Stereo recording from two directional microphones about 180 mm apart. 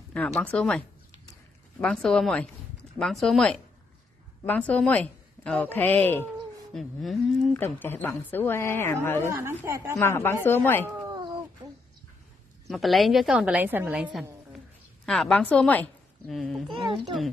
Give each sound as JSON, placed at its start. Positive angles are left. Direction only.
{"t": 0.1, "sound": "a woman's voice", "side_deg": 5}
{"t": 7.5, "sound": "a woman's voice", "side_deg": 10}
{"t": 9.2, "sound": "a woman's voice", "side_deg": -15}
{"t": 9.9, "sound": "a woman's voice", "side_deg": 15}
{"t": 11.0, "sound": "a sound", "side_deg": -20}
{"t": 12.6, "sound": "a woman's voice", "side_deg": 0}
{"t": 15.0, "sound": "a woman's voice", "side_deg": 5}
{"t": 16.7, "sound": "speech", "side_deg": -30}